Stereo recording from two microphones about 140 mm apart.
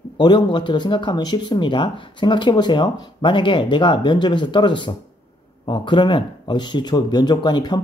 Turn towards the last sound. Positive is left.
turn(degrees=30)  # may be behind; listen again after turning